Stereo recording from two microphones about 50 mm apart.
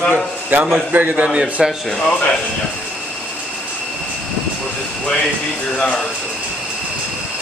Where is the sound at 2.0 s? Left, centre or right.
Left.